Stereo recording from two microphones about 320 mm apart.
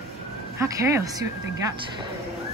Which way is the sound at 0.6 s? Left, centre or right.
Centre.